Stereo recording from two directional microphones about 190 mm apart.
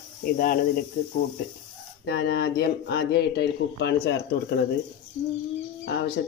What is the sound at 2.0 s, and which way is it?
Speech, 55° left (ahead or behind).